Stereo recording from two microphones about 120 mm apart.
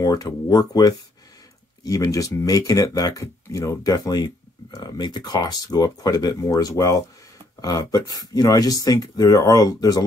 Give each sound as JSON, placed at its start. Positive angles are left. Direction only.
{"t": 0.0, "sound": "speech", "side_deg": 30}